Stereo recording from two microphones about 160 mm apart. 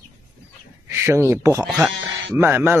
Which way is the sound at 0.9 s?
15° right (ahead or behind).